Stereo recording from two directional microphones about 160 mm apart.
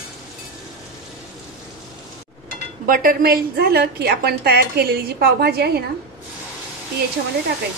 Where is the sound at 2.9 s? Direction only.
60° right (ahead or behind); by 5.9 s 90° right.